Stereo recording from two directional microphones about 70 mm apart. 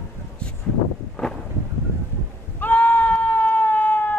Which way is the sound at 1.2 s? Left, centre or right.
Centre.